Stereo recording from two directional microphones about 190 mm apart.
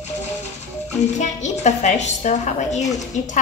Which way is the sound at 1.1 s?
40° left (ahead or behind).